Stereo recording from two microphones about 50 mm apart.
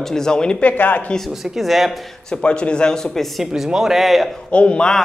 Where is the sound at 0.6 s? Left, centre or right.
Left.